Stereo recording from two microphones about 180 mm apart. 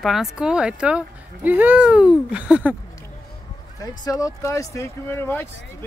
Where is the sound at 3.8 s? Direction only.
20° left (ahead or behind).